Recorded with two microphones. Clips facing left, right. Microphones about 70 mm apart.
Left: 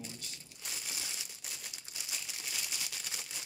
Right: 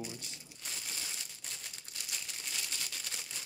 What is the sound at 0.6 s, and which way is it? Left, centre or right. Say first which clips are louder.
Crumpling: even; centre.